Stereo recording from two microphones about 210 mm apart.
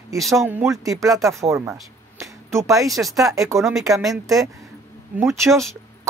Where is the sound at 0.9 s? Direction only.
15° right (ahead or behind).